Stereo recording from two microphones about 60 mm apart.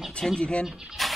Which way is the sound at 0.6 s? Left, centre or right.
Centre.